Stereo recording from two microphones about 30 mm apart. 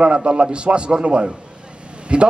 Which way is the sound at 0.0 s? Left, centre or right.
Right.